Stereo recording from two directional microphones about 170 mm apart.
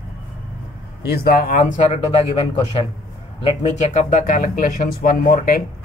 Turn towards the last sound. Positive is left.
turn(degrees=60)  # may be behind; listen again after turning